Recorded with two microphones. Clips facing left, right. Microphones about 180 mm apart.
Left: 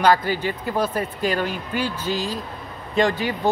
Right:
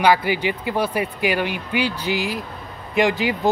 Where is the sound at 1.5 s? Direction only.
85° right.